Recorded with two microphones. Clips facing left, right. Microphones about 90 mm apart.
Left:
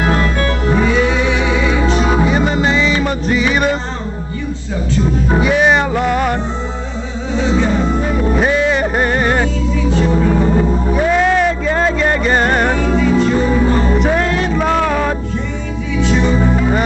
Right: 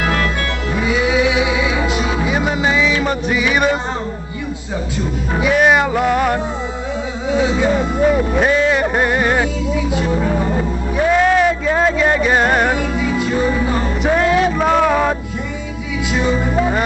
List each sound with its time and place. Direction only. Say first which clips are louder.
0.0 s music: left 3 dB; 30° left (ahead or behind)
0.8 s music: left 1 dB; 10° right (ahead or behind)
2.0 s music: left 5 dB; 40° left (ahead or behind)
2.2 s music: left 3 dB; 5° right (ahead or behind)
5.4 s music: right 1 dB; centre (ahead or behind)
8.4 s music: even; centre (ahead or behind)
10.9 s music: right 2 dB; centre (ahead or behind)
13.9 s music: even; 5° right (ahead or behind)